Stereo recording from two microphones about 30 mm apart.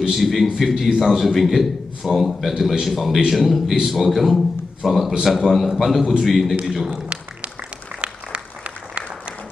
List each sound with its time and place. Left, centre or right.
0.1 s a man's voice: centre
8.0 s applause: right